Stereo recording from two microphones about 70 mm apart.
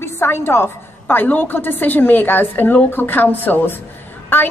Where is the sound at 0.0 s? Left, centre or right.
Left.